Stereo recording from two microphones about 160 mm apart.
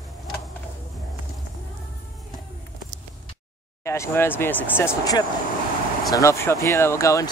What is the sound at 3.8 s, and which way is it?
Speech, 15° left (ahead or behind).